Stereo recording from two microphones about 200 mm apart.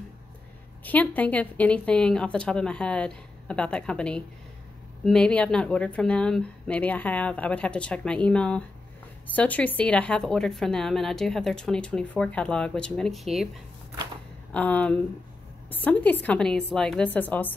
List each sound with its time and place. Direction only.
0.8 s a woman's voice: 10° left (ahead or behind)
14.5 s a woman's voice: 5° left (ahead or behind)